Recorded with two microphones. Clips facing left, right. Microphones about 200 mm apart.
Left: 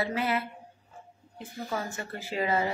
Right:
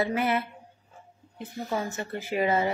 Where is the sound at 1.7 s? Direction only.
20° right (ahead or behind).